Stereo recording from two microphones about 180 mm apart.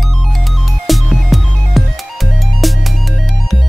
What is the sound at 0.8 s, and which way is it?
Music, centre (ahead or behind).